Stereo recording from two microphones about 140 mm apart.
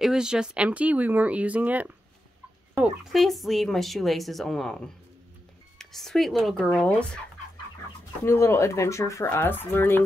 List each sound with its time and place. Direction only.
0.0 s speech: 5° right (ahead or behind)
8.3 s speech: 20° left (ahead or behind)